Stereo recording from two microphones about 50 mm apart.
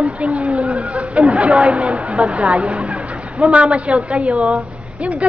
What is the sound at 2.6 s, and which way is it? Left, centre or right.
Speech, centre.